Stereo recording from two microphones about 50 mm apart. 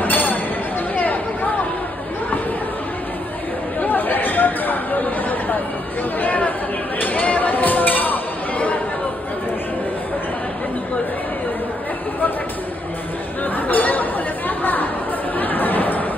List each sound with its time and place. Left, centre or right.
0.0 s a sound: left
3.8 s chatter: left
13.4 s chatter: left